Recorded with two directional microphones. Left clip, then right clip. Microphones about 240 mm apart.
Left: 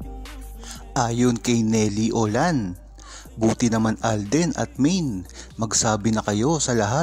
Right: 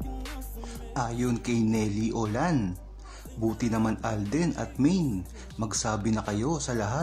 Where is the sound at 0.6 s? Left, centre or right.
Left.